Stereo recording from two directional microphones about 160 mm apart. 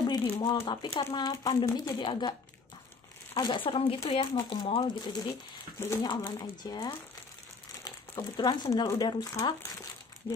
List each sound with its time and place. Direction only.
0.0 s speech: 30° left (ahead or behind)
1.0 s speech: 20° left (ahead or behind)
3.3 s speech: 30° left (ahead or behind)